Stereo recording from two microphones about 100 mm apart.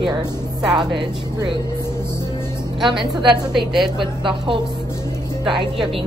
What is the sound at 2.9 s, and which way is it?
Speech, 55° right (ahead or behind).